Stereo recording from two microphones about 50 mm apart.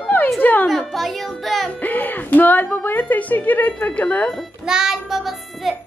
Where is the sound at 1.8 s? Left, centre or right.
Left.